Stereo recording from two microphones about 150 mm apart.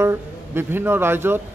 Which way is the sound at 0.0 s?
15° right (ahead or behind).